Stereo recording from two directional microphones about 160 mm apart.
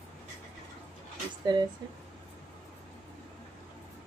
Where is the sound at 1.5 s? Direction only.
25° right (ahead or behind).